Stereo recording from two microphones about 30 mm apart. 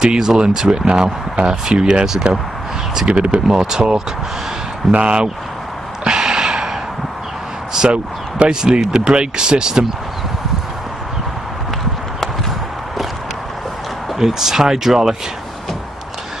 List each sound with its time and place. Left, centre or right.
0.1 s speech: right
2.3 s speech: right
3.4 s speech: right
6.0 s a sound: right
7.8 s speech: right
14.1 s speech: centre